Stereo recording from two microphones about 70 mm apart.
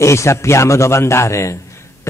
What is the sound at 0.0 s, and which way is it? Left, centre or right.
A man's voice, left.